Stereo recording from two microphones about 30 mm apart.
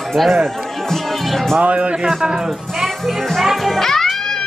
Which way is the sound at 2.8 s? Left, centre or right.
Centre.